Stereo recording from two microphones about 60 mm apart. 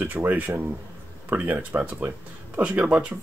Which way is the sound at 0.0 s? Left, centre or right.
Right.